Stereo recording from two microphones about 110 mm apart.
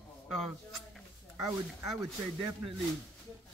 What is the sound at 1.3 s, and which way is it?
Speech, 25° right (ahead or behind).